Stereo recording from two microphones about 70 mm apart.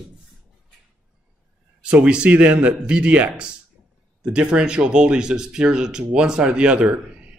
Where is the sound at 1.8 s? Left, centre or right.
Centre.